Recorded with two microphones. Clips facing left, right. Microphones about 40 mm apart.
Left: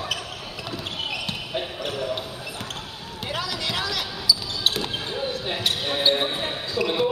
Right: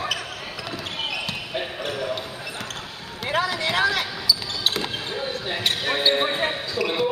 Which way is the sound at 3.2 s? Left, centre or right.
Right.